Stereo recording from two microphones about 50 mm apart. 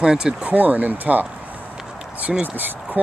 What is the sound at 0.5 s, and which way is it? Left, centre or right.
Speech, right.